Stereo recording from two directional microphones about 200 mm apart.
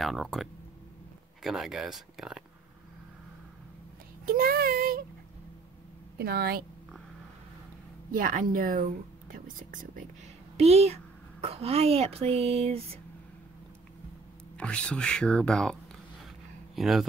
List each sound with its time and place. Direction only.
0.0 s speech: centre (ahead or behind)
4.3 s child singing: 50° right (ahead or behind)
6.1 s speech: 50° right (ahead or behind)
8.1 s speech: 45° right (ahead or behind)
10.6 s speech: 30° right (ahead or behind)
14.6 s speech: 5° left (ahead or behind)